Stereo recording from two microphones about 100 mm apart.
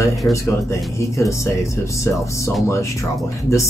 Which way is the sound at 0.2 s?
20° left (ahead or behind).